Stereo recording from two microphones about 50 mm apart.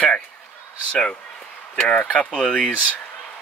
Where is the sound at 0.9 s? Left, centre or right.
Left.